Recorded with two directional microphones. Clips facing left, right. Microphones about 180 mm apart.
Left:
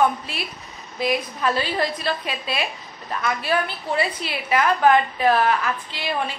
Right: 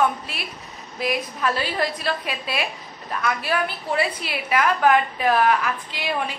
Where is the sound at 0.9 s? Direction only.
5° right (ahead or behind).